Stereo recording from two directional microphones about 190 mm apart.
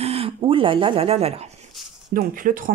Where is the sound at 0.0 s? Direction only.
30° right (ahead or behind).